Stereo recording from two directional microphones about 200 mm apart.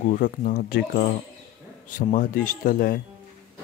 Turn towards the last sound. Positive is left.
turn(degrees=50)  # may be behind; listen again after turning